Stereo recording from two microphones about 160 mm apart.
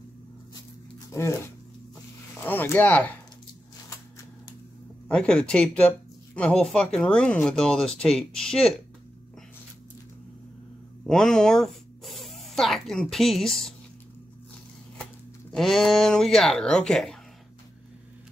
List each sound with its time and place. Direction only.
1.1 s speech: 15° left (ahead or behind)
2.4 s speech: 10° left (ahead or behind)
5.0 s speech: 5° left (ahead or behind)
11.1 s speech: 5° left (ahead or behind)
15.5 s speech: centre (ahead or behind)